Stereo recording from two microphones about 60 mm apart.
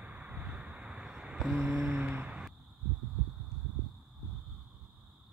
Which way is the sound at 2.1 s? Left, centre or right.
Right.